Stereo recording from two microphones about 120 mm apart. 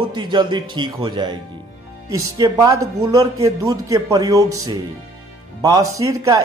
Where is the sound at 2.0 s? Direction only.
30° right (ahead or behind).